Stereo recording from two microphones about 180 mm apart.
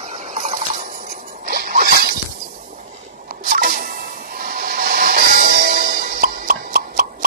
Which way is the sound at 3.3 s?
50° right (ahead or behind).